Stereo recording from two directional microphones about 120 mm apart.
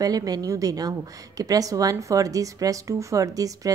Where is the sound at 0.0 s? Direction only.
30° right (ahead or behind).